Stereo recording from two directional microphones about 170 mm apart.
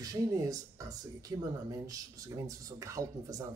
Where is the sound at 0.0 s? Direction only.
20° right (ahead or behind).